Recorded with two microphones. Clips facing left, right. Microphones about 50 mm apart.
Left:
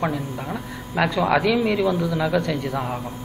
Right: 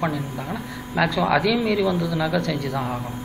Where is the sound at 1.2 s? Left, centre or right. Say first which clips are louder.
Left 1 dB; centre.